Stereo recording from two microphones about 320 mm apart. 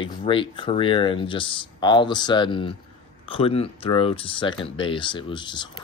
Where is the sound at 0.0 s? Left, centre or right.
Centre.